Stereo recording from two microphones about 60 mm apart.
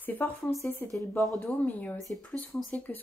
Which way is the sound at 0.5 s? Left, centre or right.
Left.